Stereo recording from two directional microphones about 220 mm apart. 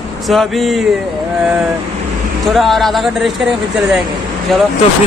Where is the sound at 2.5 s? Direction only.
Centre (ahead or behind).